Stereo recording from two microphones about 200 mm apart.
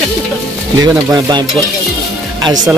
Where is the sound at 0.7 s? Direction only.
20° right (ahead or behind).